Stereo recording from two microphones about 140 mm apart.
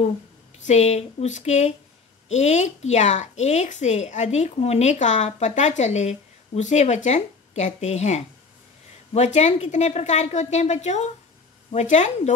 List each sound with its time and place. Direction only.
0.7 s a woman's voice: 55° left (ahead or behind)